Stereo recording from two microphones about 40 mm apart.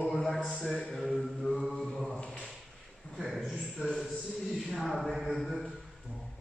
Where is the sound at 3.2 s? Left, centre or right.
Centre.